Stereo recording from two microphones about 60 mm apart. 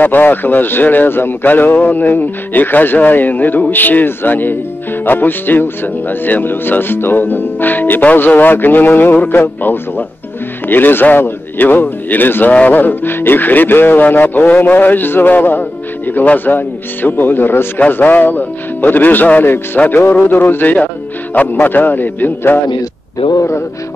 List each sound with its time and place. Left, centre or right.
0.0 s speech: left